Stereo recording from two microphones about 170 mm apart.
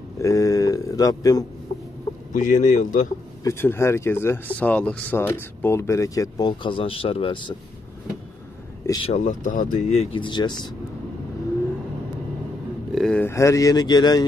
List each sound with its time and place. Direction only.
0.2 s speech: 20° left (ahead or behind)
2.3 s speech: 45° left (ahead or behind)
3.4 s speech: 15° left (ahead or behind); by 7.5 s 30° left (ahead or behind)
9.0 s speech: 45° left (ahead or behind)
10.1 s speech: 25° left (ahead or behind)
12.9 s speech: 5° left (ahead or behind)
13.3 s speech: 15° left (ahead or behind)